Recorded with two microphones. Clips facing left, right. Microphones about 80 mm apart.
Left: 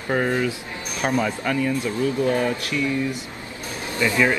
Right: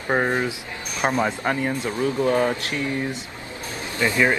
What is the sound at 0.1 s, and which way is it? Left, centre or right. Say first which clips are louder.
A man's voice: even; right.